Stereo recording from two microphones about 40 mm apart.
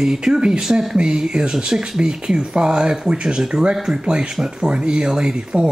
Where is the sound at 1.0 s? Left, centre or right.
Centre.